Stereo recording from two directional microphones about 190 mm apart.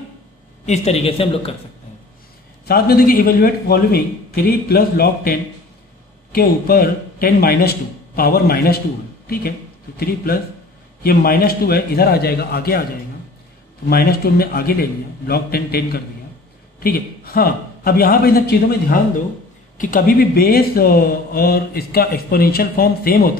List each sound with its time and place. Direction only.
0.7 s speech: 35° left (ahead or behind)
2.6 s speech: 55° left (ahead or behind)
9.9 s a man's voice: 50° left (ahead or behind)
13.8 s speech: 55° left (ahead or behind)